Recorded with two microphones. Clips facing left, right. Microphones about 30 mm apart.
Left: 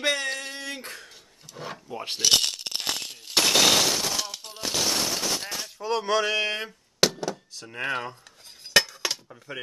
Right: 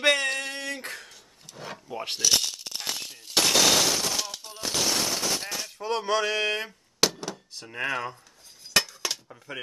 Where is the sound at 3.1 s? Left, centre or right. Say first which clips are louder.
Left 2 dB; left.